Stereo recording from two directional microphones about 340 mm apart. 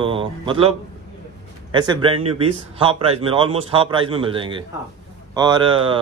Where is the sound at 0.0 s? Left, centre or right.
Centre.